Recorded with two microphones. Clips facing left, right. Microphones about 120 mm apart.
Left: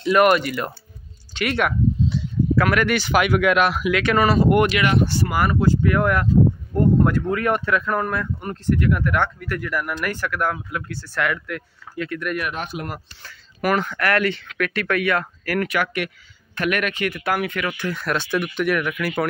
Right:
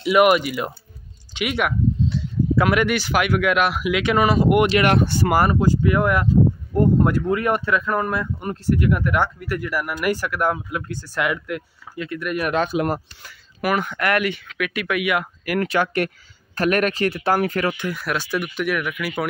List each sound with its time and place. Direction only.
0.0 s speech: 10° right (ahead or behind)
2.1 s a sound: centre (ahead or behind)
2.5 s speech: 20° right (ahead or behind)
2.9 s speech: 5° right (ahead or behind)
4.8 s speech: 90° right
5.3 s speech: 30° right (ahead or behind)
5.6 s speech: 15° right (ahead or behind)
12.0 s speech: 5° right (ahead or behind)
12.4 s speech: 40° right (ahead or behind)
13.6 s speech: 10° right (ahead or behind)
15.6 s speech: 30° right (ahead or behind)
17.7 s speech: 10° right (ahead or behind)